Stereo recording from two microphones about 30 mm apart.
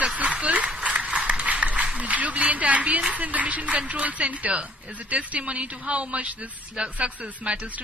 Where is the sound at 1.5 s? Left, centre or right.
Right.